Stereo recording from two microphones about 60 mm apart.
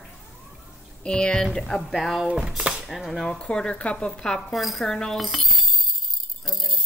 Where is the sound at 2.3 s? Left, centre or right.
Centre.